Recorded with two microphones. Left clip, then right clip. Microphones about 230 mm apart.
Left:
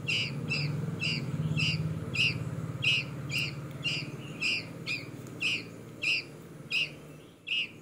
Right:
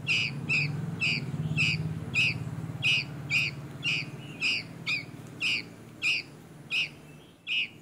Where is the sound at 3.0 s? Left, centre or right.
Right.